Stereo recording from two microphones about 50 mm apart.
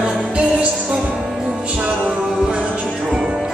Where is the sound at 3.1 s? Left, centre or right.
Right.